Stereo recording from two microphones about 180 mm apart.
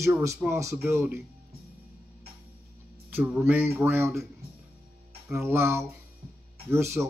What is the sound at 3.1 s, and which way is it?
Speech, 10° right (ahead or behind).